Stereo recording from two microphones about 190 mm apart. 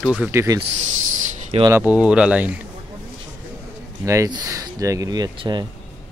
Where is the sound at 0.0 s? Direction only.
5° right (ahead or behind).